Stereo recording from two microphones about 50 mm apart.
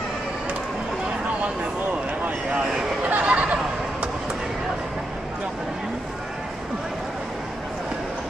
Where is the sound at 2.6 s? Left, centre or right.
Centre.